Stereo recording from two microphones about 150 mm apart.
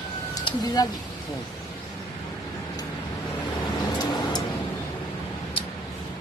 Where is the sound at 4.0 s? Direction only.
25° left (ahead or behind).